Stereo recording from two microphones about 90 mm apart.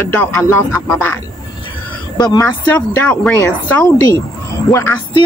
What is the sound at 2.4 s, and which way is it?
Speech, 20° left (ahead or behind).